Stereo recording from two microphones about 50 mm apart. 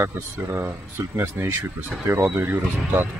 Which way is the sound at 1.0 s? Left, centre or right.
Right.